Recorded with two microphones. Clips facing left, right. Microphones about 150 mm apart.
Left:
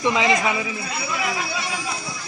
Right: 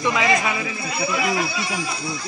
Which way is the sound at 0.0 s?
25° left (ahead or behind).